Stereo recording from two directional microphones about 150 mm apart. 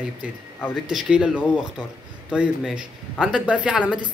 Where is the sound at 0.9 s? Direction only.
5° right (ahead or behind).